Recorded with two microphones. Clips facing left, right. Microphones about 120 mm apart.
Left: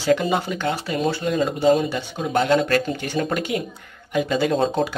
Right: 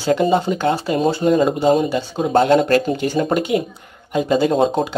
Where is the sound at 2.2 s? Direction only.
40° right (ahead or behind).